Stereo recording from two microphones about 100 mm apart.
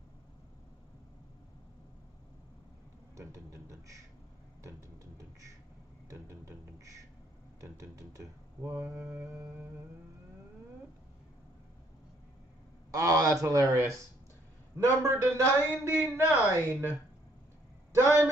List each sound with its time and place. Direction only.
3.2 s a man's voice: 35° right (ahead or behind)
4.6 s a sound: 35° right (ahead or behind)
6.2 s a man's voice: 30° right (ahead or behind)
8.6 s mantra: 30° right (ahead or behind)
12.9 s a man's voice: 35° right (ahead or behind)
14.8 s mantra: 30° right (ahead or behind)
17.9 s mantra: 25° right (ahead or behind)